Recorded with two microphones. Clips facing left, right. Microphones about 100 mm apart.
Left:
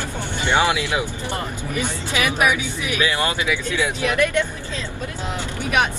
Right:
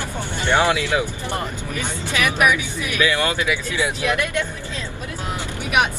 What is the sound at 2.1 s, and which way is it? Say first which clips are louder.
Speech: right 1 dB; 20° left (ahead or behind).